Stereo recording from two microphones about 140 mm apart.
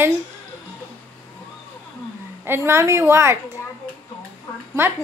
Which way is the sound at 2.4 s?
15° right (ahead or behind).